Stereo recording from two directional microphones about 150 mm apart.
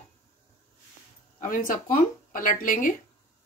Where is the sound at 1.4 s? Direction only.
65° left (ahead or behind).